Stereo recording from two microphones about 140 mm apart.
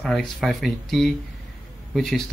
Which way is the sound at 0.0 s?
Centre (ahead or behind).